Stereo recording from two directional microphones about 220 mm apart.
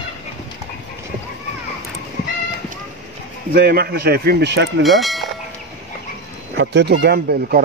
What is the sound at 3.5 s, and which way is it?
Speech, 45° right (ahead or behind).